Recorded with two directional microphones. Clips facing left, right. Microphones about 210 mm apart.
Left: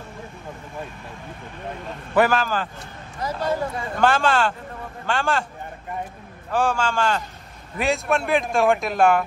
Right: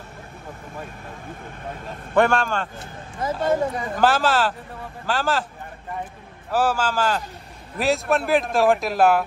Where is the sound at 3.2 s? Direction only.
25° right (ahead or behind).